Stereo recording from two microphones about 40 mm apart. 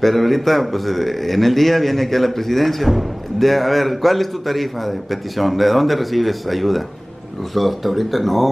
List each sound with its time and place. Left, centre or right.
0.0 s a man's voice: centre